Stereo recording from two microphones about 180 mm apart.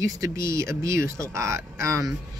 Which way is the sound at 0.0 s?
15° right (ahead or behind).